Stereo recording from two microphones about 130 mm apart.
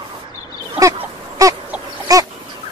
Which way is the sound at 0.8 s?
25° right (ahead or behind).